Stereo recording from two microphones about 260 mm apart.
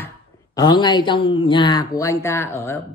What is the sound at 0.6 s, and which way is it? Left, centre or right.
A man's voice, centre.